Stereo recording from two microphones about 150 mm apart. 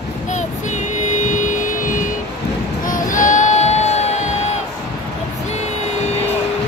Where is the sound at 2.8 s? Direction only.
60° left (ahead or behind).